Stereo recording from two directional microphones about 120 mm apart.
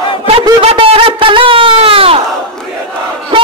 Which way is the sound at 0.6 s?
50° right (ahead or behind).